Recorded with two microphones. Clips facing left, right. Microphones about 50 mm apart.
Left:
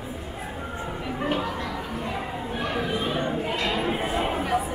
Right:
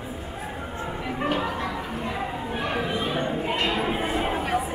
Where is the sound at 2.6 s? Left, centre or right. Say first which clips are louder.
Even; right.